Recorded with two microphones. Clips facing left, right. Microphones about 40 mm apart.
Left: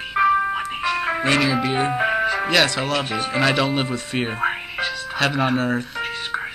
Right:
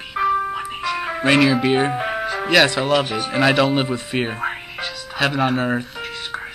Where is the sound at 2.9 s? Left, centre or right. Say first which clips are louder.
Right 5 dB; centre.